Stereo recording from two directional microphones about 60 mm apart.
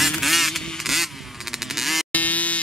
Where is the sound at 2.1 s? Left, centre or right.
Left.